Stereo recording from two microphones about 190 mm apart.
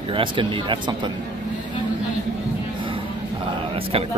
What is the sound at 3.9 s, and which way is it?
Speech, 30° right (ahead or behind).